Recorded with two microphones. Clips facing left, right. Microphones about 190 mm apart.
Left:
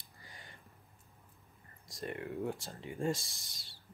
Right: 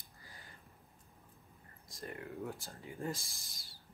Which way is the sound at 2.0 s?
25° left (ahead or behind).